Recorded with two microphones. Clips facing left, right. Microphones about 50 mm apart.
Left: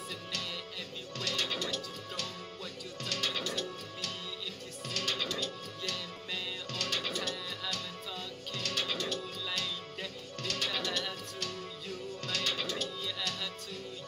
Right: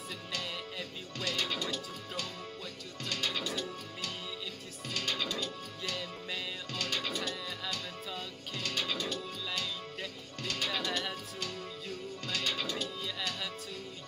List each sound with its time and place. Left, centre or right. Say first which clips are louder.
1.2 s music: right 1 dB; centre
3.4 s music: even; centre
10.4 s music: even; centre